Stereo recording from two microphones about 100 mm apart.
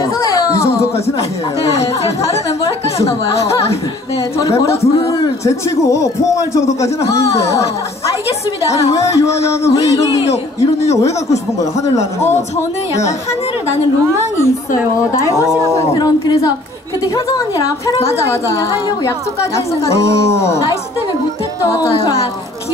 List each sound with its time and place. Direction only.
0.0 s a sound: 35° left (ahead or behind)
4.4 s a man's voice: 35° left (ahead or behind)
9.7 s a man's voice: 35° left (ahead or behind)
12.2 s a woman's voice: 25° left (ahead or behind)
15.1 s a man's voice: 30° left (ahead or behind)
16.0 s a woman's voice: 40° left (ahead or behind)
18.0 s a woman's voice: 30° left (ahead or behind)